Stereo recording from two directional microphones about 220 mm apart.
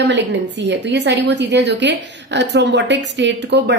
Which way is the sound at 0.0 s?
50° right (ahead or behind).